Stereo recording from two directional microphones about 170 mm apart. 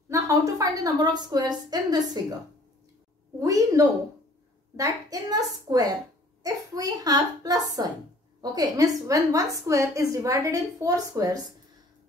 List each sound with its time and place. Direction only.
0.1 s a woman's voice: 20° right (ahead or behind)
3.3 s a woman's voice: 20° right (ahead or behind)